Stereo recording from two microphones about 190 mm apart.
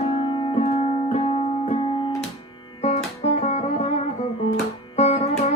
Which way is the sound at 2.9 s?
35° left (ahead or behind).